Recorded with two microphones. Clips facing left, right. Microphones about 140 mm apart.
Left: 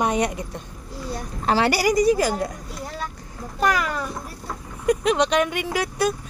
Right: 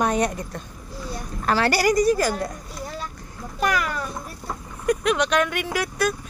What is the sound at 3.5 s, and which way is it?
Speech, 25° left (ahead or behind).